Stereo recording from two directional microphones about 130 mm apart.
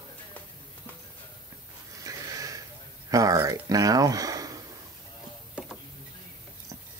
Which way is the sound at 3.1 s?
25° right (ahead or behind).